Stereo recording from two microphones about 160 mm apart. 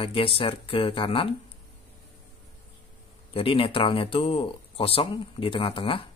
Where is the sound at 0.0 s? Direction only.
35° left (ahead or behind).